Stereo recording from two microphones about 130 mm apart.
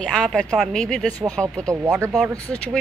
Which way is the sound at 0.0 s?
5° left (ahead or behind).